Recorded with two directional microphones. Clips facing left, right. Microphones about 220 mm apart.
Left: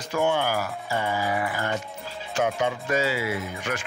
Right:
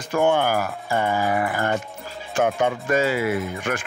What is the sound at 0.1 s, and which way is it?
Speech, 50° right (ahead or behind).